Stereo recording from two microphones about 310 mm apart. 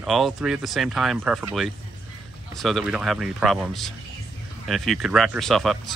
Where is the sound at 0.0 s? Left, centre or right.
Centre.